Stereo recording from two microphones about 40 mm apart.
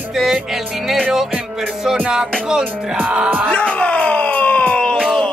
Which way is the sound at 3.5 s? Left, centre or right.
Left.